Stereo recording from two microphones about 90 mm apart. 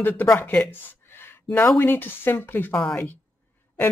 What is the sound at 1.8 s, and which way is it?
Speech, 25° left (ahead or behind).